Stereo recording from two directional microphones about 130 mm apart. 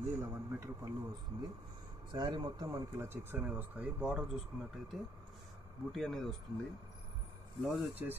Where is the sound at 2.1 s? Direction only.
35° right (ahead or behind); by 4.3 s 10° right (ahead or behind).